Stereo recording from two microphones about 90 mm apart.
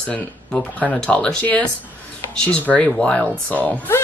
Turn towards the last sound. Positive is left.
turn(degrees=15)  # may be behind; listen again after turning